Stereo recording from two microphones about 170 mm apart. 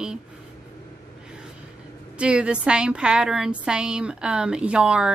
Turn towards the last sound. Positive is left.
turn(degrees=-5)  # may be behind; listen again after turning